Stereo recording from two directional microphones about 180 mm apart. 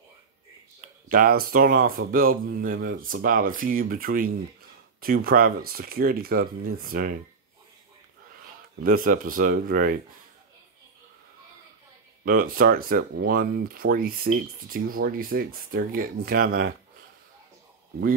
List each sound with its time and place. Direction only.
0.7 s speech: 50° right (ahead or behind)
8.8 s speech: 55° right (ahead or behind)
12.3 s speech: 55° right (ahead or behind)